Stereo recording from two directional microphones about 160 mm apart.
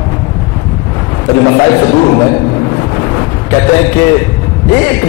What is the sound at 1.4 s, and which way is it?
Speech, 20° left (ahead or behind).